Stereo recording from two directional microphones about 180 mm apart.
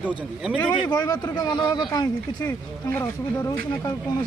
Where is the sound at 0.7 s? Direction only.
20° left (ahead or behind).